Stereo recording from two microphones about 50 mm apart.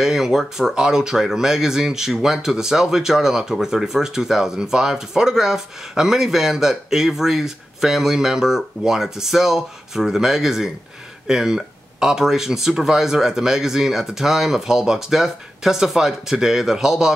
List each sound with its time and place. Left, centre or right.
0.0 s speech: centre